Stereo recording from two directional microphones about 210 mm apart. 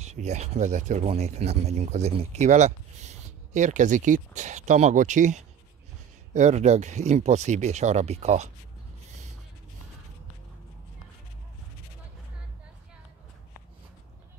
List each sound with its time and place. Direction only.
0.0 s speech: 30° right (ahead or behind)